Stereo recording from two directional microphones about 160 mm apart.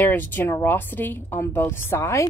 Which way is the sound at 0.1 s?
10° left (ahead or behind).